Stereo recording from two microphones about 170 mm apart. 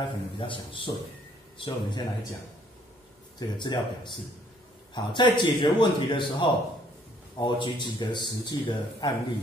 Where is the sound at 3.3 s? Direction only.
25° left (ahead or behind).